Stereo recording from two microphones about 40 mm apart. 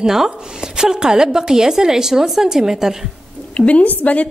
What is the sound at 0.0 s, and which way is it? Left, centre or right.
A woman's voice, centre.